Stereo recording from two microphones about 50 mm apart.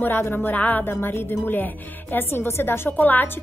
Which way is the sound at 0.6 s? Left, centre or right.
Left.